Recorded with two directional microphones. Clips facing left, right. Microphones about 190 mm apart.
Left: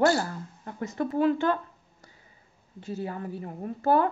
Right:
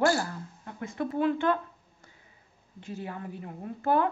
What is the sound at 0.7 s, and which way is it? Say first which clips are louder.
A woman's voice: left 3 dB; 40° left (ahead or behind).